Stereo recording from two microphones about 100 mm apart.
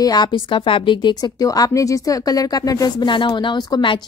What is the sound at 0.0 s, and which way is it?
A woman's voice, 45° left (ahead or behind).